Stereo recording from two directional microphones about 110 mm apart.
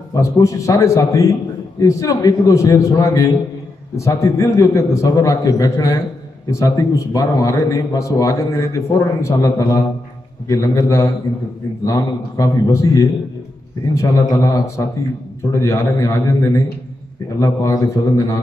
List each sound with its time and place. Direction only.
0.1 s a man's voice: 30° left (ahead or behind)